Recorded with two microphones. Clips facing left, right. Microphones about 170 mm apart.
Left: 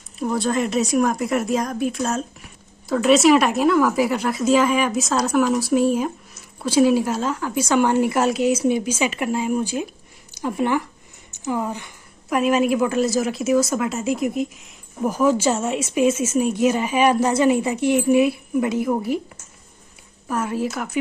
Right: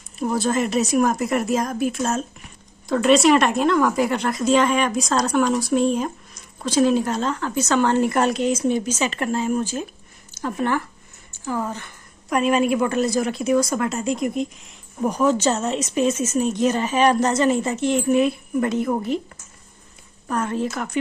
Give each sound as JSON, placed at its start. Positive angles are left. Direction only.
{"t": 0.2, "sound": "a woman's voice", "side_deg": 0}
{"t": 12.3, "sound": "a woman's voice", "side_deg": 0}
{"t": 20.2, "sound": "a woman's voice", "side_deg": 5}